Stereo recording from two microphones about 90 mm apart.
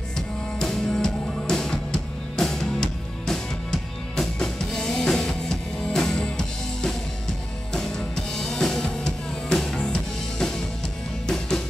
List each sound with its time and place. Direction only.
0.6 s music: 5° left (ahead or behind)
8.4 s music: 5° left (ahead or behind)